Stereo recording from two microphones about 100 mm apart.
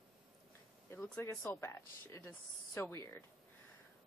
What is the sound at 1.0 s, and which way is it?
Speech, 10° left (ahead or behind).